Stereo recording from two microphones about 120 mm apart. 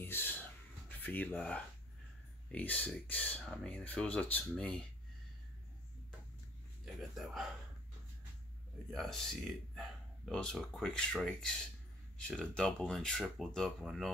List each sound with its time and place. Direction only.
0.0 s a sound: 15° left (ahead or behind)
2.5 s speech: 15° left (ahead or behind)
7.0 s speech: centre (ahead or behind)
8.9 s speech: centre (ahead or behind)